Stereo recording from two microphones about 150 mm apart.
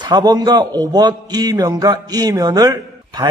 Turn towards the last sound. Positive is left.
turn(degrees=-25)  # may be behind; listen again after turning